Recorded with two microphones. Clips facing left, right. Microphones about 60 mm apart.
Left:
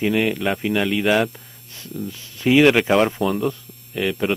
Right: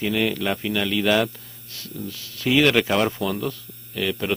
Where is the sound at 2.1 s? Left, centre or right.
Left.